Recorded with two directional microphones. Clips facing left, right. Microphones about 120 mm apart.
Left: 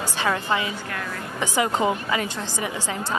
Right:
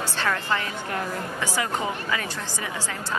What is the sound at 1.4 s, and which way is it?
A woman's voice, 20° left (ahead or behind).